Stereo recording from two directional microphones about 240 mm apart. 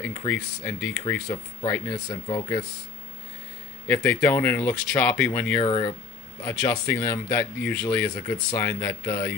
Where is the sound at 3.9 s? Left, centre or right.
Centre.